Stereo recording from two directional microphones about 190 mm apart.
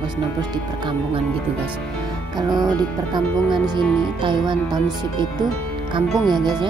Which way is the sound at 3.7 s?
25° right (ahead or behind).